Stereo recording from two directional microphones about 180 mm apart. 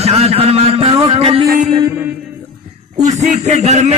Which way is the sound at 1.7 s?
15° right (ahead or behind).